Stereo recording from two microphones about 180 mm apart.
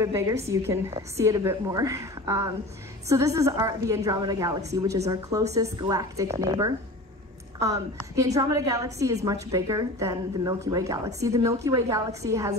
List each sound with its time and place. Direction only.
0.0 s a woman's voice: 15° right (ahead or behind)
7.5 s a woman's voice: 20° right (ahead or behind)